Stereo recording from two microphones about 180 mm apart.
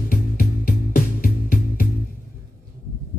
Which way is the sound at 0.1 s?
55° left (ahead or behind).